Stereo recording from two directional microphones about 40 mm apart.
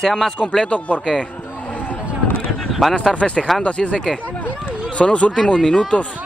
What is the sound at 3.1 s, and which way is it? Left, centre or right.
A man's voice, left.